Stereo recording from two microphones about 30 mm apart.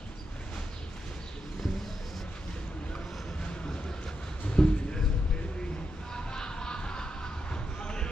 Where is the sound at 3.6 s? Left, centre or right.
Left.